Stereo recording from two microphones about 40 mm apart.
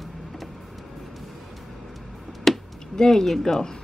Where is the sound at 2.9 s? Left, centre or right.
Centre.